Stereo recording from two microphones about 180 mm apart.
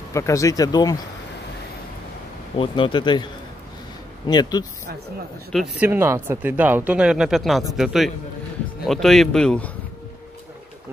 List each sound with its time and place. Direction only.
0.1 s speech: 15° left (ahead or behind)
2.5 s speech: 30° left (ahead or behind)
4.3 s speech: 20° left (ahead or behind)
5.5 s speech: centre (ahead or behind)
5.9 s speech: 15° right (ahead or behind); by 9.7 s 5° left (ahead or behind)